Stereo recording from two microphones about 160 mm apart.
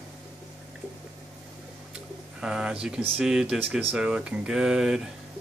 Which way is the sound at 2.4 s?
5° right (ahead or behind).